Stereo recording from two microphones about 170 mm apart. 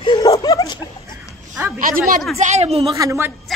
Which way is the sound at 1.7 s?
55° right (ahead or behind).